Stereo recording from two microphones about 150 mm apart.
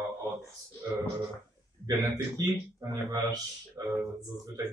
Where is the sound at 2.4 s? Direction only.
25° right (ahead or behind).